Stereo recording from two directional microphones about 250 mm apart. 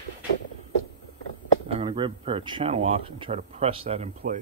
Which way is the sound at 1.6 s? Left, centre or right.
Right.